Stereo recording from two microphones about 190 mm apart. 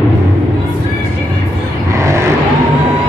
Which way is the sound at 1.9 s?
15° right (ahead or behind).